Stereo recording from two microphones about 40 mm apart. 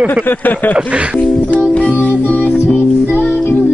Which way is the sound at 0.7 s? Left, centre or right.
Right.